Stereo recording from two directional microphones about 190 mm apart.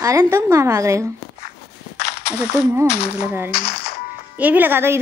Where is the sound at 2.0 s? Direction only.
60° left (ahead or behind).